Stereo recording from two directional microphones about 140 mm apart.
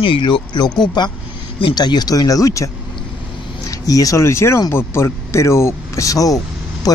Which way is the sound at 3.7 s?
25° left (ahead or behind).